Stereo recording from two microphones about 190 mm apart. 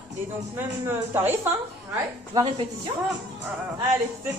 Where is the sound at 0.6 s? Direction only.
10° right (ahead or behind).